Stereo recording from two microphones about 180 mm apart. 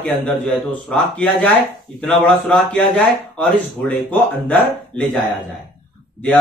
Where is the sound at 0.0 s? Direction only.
5° left (ahead or behind).